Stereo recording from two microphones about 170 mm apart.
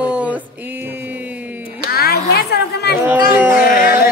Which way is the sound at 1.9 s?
65° left (ahead or behind).